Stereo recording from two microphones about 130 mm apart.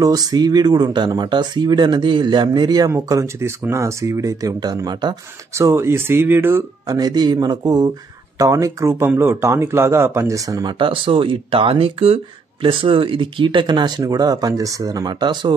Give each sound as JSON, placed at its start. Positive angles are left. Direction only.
{"t": 0.0, "sound": "speech", "side_deg": -30}
{"t": 2.9, "sound": "speech", "side_deg": -20}
{"t": 5.6, "sound": "speech", "side_deg": -20}
{"t": 6.9, "sound": "speech", "side_deg": -30}